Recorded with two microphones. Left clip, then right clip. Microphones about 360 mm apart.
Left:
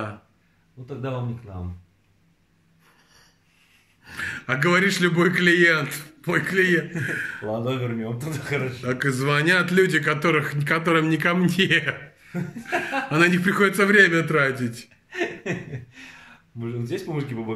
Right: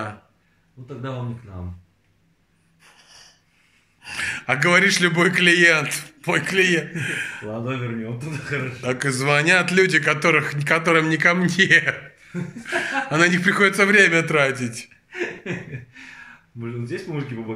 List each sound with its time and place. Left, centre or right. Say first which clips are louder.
2.8 s gasp: right 8 dB; centre
4.0 s a man's voice: right 4 dB; centre
7.6 s speech: left 1 dB; centre
8.8 s a man's voice: right 4 dB; centre
15.0 s speech: left 1 dB; centre